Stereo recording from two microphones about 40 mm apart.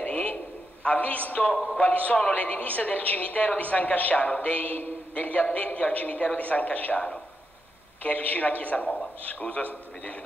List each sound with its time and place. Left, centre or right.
0.0 s a sound: left
0.8 s a woman's voice: left
8.0 s a woman's voice: left